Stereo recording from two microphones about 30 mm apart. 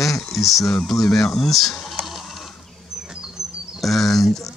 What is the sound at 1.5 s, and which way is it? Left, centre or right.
Speech, centre.